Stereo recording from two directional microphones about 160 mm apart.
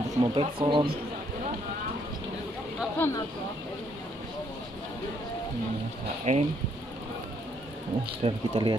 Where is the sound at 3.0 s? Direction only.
10° left (ahead or behind).